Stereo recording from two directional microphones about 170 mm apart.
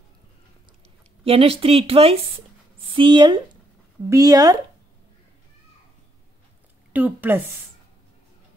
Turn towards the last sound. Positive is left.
turn(degrees=-10)  # may be behind; listen again after turning